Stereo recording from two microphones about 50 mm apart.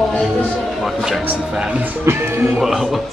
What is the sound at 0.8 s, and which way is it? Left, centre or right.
Speech, centre.